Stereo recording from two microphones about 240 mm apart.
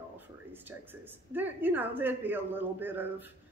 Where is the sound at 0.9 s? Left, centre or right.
Centre.